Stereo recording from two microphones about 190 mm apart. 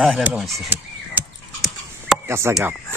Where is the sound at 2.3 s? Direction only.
15° right (ahead or behind).